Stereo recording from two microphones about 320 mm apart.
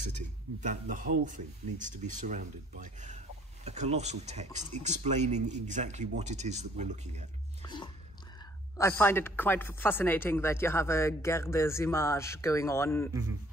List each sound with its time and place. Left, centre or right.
0.6 s speech: right
7.6 s speech: centre